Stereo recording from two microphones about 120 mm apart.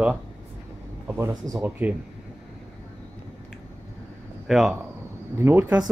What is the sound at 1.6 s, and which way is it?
Speech, 10° right (ahead or behind).